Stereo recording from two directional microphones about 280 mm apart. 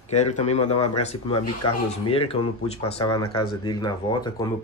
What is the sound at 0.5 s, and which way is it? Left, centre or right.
Speech, left.